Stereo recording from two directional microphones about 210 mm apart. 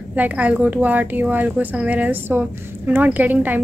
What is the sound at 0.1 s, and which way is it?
A woman's voice, 5° right (ahead or behind).